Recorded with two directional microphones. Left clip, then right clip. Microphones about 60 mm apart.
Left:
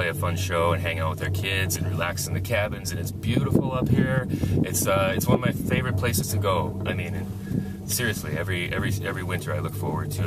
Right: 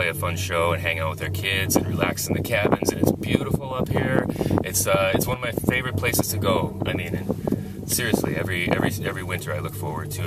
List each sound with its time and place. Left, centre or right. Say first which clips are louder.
0.0 s speech: right 2 dB; centre
7.9 s speech: right 4 dB; centre